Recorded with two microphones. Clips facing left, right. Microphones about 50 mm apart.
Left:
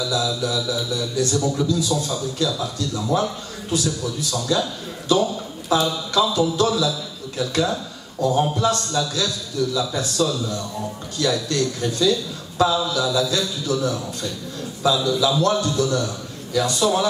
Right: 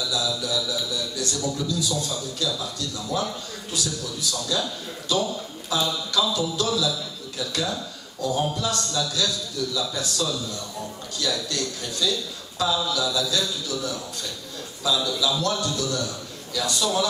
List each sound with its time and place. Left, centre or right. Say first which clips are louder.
0.1 s a man's voice: left 3 dB; left
15.0 s a man's voice: left 6 dB; left